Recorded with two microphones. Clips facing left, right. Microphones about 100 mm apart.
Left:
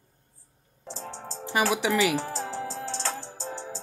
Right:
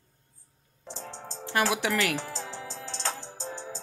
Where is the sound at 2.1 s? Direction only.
35° left (ahead or behind).